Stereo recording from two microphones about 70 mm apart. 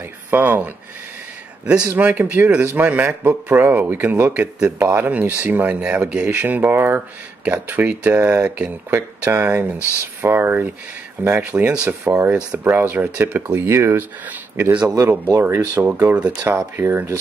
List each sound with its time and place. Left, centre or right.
0.3 s speech: right
1.7 s speech: right
2.9 s speech: right
11.2 s speech: centre
12.0 s speech: right
12.6 s speech: right
13.7 s speech: right
15.4 s speech: right
15.9 s speech: right
16.4 s speech: right